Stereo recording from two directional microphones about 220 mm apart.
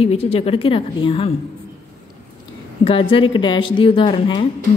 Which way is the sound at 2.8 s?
25° left (ahead or behind).